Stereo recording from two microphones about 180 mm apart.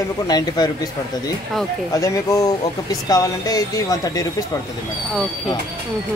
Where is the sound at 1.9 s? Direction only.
15° left (ahead or behind).